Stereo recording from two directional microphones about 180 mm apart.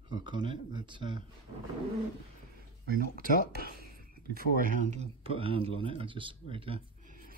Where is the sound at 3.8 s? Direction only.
55° right (ahead or behind).